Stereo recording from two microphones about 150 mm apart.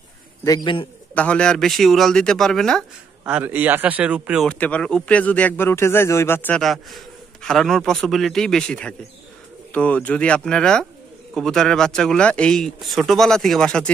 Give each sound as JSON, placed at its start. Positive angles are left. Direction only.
{"t": 1.1, "sound": "speech", "side_deg": 10}
{"t": 3.3, "sound": "a man's voice", "side_deg": -10}
{"t": 4.5, "sound": "a man's voice", "side_deg": 10}
{"t": 6.6, "sound": "a man's voice", "side_deg": 0}